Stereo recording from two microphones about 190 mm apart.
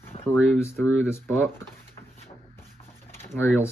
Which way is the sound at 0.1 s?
35° left (ahead or behind).